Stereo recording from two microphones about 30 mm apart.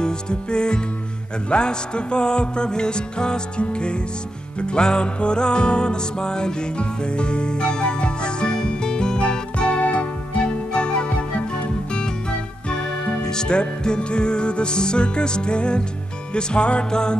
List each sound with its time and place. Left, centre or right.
0.0 s music: left
9.2 s music: left
16.9 s music: left